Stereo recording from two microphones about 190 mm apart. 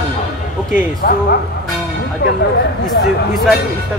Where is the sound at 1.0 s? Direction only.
50° left (ahead or behind).